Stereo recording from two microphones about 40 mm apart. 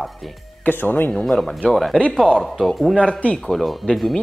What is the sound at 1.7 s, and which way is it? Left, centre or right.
Speech, centre.